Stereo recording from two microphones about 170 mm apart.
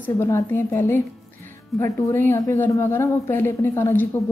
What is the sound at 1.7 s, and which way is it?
Speech, centre (ahead or behind).